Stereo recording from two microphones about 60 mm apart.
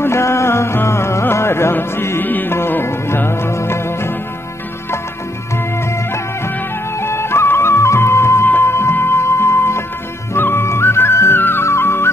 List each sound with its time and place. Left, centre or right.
0.0 s music: left
7.0 s music: left
11.6 s music: left